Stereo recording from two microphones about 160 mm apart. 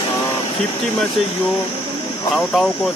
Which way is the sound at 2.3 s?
Centre (ahead or behind).